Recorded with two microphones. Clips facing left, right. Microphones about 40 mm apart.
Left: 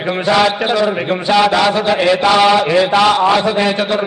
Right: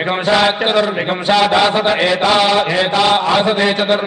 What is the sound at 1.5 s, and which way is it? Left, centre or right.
Speech, centre.